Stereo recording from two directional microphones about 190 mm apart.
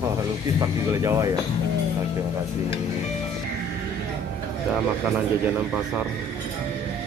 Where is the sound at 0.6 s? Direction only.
15° right (ahead or behind).